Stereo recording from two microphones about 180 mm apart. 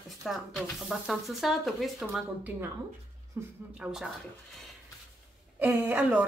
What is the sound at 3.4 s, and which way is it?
Speech, 15° right (ahead or behind).